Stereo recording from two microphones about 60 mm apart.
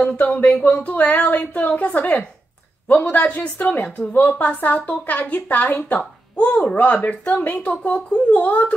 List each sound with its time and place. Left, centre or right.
0.0 s a woman's voice: left